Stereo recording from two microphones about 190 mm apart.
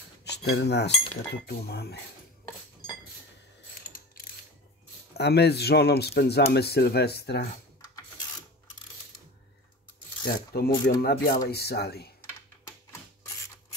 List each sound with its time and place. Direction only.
0.2 s cutlery: 65° left (ahead or behind)
1.3 s speech: 60° left (ahead or behind)
3.8 s mechanisms: 50° left (ahead or behind)
5.1 s speech: 60° left (ahead or behind)
10.2 s filing: 55° left (ahead or behind)
10.9 s speech: 50° left (ahead or behind)